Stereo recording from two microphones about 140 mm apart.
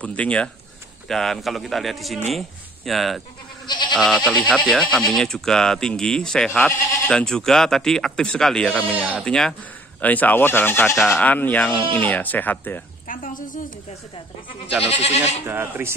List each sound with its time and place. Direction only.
0.0 s speech: 10° left (ahead or behind)
3.6 s goat: 30° left (ahead or behind)
3.9 s speech: centre (ahead or behind)
8.7 s speech: 10° right (ahead or behind)
9.2 s speech: 5° left (ahead or behind)
13.0 s a woman's voice: 75° left (ahead or behind)
14.8 s goat: 50° left (ahead or behind)
15.4 s speech: 15° right (ahead or behind)